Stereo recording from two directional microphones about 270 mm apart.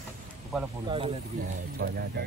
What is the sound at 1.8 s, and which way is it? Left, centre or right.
Speech, right.